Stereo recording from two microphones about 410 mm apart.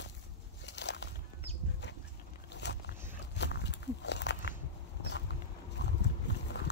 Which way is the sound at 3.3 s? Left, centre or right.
Left.